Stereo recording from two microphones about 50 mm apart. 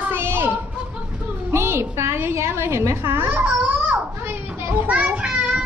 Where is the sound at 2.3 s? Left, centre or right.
Right.